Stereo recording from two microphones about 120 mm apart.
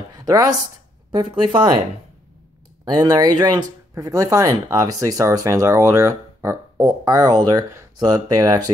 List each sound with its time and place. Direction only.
0.1 s a sound: 30° right (ahead or behind)
1.1 s speech: 45° right (ahead or behind)
2.8 s speech: 35° right (ahead or behind)